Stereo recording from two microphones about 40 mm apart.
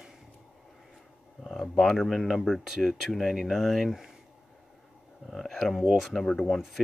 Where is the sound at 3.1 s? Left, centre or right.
Centre.